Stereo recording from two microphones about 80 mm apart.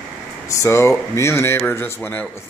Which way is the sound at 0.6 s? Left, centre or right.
Left.